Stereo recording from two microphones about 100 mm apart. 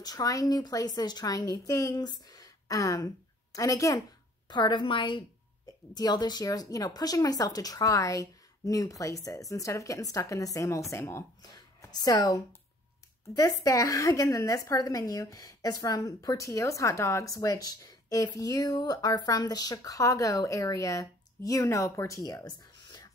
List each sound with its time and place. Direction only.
0.0 s a woman's voice: 40° left (ahead or behind)
4.5 s a woman's voice: 45° left (ahead or behind)
5.9 s a woman's voice: 45° left (ahead or behind); by 11.2 s 25° left (ahead or behind)
11.4 s a woman's voice: 40° left (ahead or behind)
13.4 s a woman's voice: 35° left (ahead or behind)